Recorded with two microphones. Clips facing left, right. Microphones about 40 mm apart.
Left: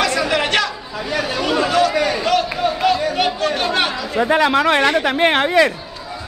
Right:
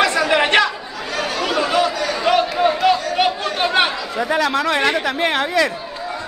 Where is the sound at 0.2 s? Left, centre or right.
Centre.